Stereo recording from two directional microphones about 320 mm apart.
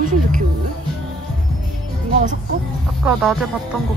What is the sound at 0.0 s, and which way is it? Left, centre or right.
Music, right.